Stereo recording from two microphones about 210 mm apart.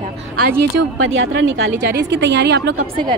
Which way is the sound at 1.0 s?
65° right (ahead or behind).